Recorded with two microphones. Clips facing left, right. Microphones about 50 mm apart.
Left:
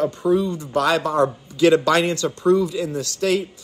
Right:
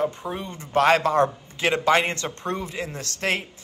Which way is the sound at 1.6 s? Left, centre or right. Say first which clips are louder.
Left 5 dB; right.